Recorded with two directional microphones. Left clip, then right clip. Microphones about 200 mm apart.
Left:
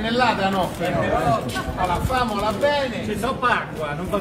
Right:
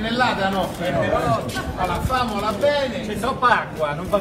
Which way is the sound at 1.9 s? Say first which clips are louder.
Even; 50° left (ahead or behind).